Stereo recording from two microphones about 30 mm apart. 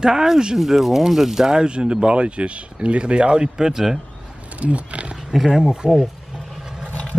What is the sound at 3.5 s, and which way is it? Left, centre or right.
Speech, centre.